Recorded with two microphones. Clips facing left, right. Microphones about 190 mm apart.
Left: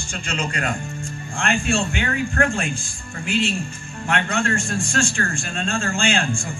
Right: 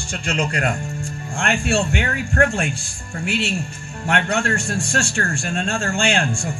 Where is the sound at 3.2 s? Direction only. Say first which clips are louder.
Left 1 dB; 10° right (ahead or behind).